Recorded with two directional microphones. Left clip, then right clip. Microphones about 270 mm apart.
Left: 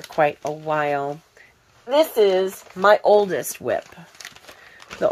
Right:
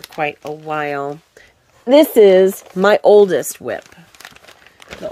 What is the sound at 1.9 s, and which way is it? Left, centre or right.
Speech, right.